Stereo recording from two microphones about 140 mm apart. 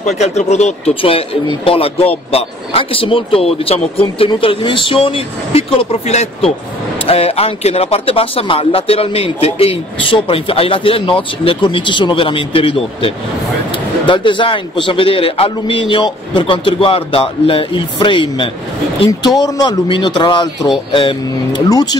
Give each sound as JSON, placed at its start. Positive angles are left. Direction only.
{"t": 0.0, "sound": "speech", "side_deg": 55}